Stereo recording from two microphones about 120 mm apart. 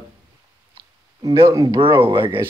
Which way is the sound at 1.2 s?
30° right (ahead or behind).